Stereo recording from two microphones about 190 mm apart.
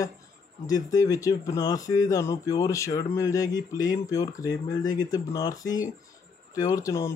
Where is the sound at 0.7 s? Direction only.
20° left (ahead or behind).